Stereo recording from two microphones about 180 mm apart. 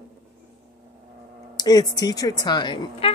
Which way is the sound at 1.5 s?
20° left (ahead or behind).